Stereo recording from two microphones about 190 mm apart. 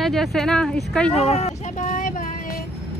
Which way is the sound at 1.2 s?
35° left (ahead or behind).